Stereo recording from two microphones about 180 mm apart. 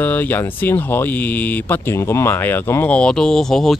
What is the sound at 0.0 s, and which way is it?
Speech, 10° left (ahead or behind).